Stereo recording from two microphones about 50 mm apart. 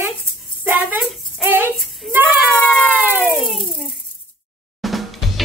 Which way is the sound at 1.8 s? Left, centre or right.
Centre.